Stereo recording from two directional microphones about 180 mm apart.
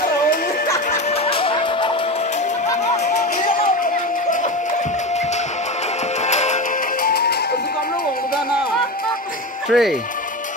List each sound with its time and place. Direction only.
1.2 s music: 30° left (ahead or behind)
2.9 s a sound: 40° left (ahead or behind)
6.2 s music: 40° left (ahead or behind)
7.1 s music: 60° left (ahead or behind)
9.7 s speech: centre (ahead or behind)